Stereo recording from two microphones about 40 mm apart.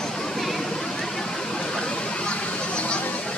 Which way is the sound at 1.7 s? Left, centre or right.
Left.